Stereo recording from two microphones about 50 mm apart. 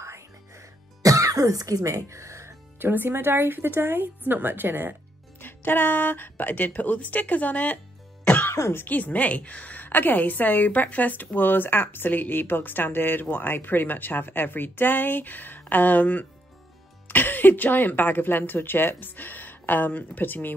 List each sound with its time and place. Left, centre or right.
0.0 s music: right
1.4 s speech: right
2.8 s speech: right
5.4 s a woman's voice: left